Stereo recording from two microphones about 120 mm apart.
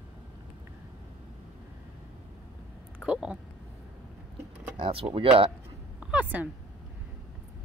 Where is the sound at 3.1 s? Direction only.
5° right (ahead or behind).